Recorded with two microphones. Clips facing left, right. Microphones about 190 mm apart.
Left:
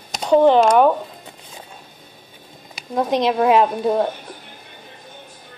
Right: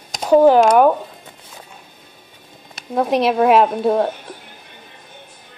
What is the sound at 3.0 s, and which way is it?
Speech, 5° right (ahead or behind).